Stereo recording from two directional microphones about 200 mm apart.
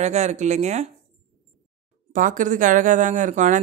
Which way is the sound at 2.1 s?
40° right (ahead or behind).